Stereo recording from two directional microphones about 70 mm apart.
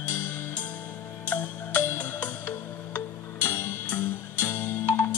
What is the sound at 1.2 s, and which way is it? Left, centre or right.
Music, left.